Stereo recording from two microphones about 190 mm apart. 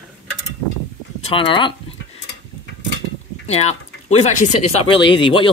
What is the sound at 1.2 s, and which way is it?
Speech, 25° left (ahead or behind).